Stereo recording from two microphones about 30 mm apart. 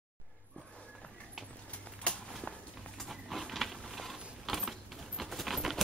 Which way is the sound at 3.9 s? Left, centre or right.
Centre.